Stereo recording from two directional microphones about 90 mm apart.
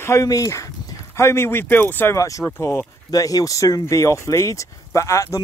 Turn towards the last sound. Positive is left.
turn(degrees=35)  # may be behind; listen again after turning